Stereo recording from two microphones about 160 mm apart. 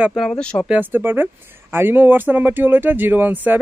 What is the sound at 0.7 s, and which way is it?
Speech, 10° right (ahead or behind).